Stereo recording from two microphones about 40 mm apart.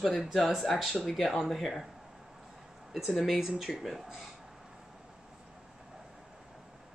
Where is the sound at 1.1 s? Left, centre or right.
Centre.